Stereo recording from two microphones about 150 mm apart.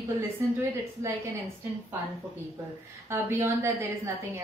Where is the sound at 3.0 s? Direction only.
15° right (ahead or behind).